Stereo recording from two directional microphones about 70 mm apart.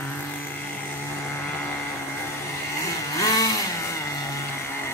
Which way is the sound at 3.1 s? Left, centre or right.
Left.